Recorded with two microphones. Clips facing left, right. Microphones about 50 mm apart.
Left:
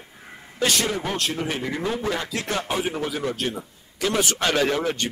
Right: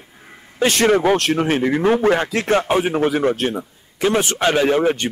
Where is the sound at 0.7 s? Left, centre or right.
Right.